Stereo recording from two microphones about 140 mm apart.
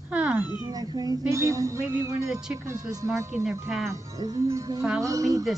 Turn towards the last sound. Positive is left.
turn(degrees=-25)  # may be behind; listen again after turning